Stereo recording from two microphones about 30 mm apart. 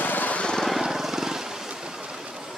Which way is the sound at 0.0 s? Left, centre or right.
Left.